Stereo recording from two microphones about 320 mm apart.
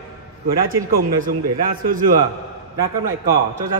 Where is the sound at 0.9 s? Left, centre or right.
Right.